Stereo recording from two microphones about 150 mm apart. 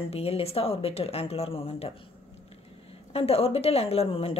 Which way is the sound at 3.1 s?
40° left (ahead or behind).